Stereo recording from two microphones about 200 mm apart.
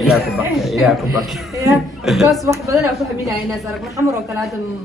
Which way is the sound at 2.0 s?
Centre (ahead or behind).